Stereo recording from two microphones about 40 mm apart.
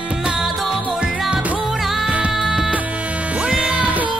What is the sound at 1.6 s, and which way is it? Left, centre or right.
Music, centre.